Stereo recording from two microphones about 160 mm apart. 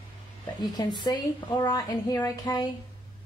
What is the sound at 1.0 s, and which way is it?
A woman's voice, 25° left (ahead or behind).